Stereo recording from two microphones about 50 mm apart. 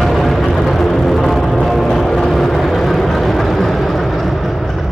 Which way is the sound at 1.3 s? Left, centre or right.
Centre.